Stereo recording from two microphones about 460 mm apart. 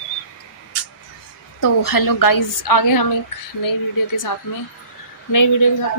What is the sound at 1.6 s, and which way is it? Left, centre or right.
A woman's voice, left.